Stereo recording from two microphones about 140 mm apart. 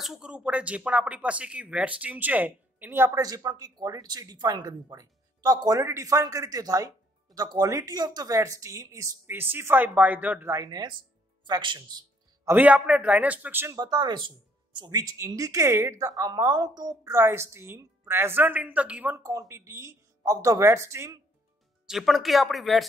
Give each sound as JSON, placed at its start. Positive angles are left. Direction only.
{"t": 0.0, "sound": "speech", "side_deg": -5}
{"t": 10.6, "sound": "speech", "side_deg": -30}
{"t": 12.4, "sound": "a man's voice", "side_deg": -10}
{"t": 13.7, "sound": "speech", "side_deg": -30}
{"t": 21.8, "sound": "speech", "side_deg": 0}